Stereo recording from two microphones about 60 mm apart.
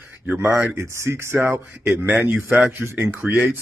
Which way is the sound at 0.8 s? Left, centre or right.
Right.